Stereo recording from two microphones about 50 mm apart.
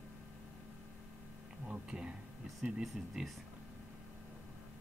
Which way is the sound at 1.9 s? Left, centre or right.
Centre.